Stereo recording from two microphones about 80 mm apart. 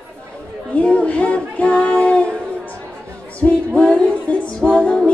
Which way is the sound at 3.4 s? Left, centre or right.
Left.